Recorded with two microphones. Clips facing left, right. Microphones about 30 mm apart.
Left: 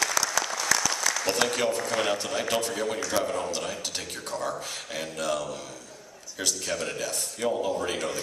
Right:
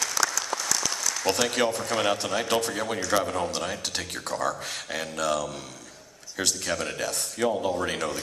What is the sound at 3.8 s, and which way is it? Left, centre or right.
Speech, right.